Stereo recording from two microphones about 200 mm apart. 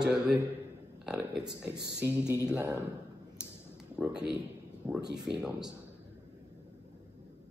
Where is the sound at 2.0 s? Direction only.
15° right (ahead or behind).